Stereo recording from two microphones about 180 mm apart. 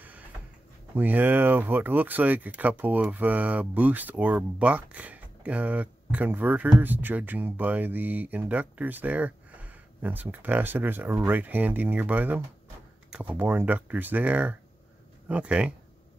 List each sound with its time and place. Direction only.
0.9 s speech: 10° right (ahead or behind)